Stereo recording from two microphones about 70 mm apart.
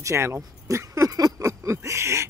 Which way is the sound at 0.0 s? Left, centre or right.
Right.